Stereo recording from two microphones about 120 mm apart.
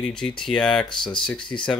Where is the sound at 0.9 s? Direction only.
40° left (ahead or behind).